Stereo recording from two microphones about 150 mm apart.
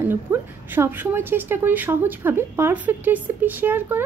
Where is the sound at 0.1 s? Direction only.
15° right (ahead or behind).